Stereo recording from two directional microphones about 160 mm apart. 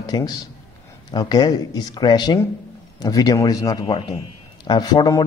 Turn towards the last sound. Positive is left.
turn(degrees=25)  # may be behind; listen again after turning